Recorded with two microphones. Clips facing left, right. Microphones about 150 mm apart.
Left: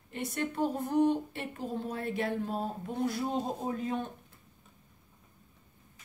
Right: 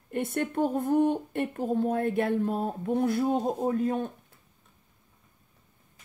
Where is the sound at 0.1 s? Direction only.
55° right (ahead or behind).